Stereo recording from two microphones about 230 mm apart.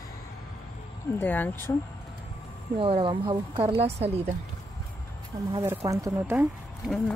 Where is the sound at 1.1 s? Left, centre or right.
Centre.